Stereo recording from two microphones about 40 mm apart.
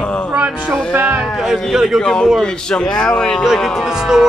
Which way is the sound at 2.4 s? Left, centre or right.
Centre.